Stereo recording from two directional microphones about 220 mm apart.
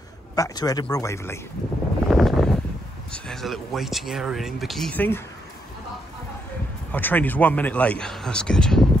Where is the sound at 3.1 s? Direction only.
5° left (ahead or behind).